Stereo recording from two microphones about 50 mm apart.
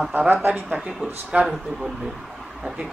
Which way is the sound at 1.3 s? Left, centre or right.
Right.